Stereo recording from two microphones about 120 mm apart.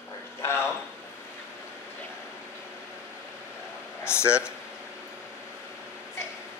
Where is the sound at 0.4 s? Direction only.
20° left (ahead or behind).